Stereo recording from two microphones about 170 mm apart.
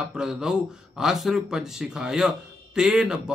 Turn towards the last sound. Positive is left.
turn(degrees=-5)  # may be behind; listen again after turning